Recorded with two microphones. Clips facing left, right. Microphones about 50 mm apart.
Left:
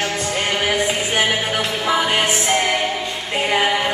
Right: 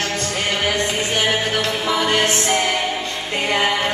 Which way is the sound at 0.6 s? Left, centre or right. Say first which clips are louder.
Left 1 dB; centre.